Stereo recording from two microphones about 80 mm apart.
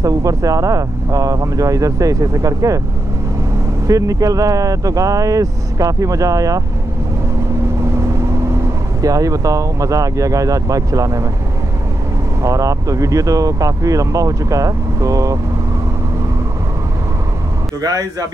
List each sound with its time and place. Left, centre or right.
0.0 s speech: right
3.8 s speech: right
9.0 s speech: right
12.4 s speech: right